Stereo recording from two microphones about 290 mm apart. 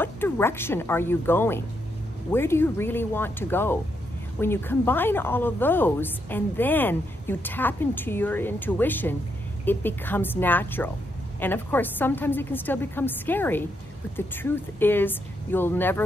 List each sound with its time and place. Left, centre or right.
0.0 s speech: centre